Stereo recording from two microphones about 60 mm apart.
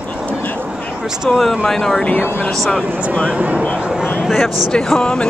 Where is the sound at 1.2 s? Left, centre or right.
Centre.